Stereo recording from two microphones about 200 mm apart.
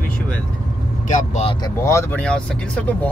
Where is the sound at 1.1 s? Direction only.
40° left (ahead or behind).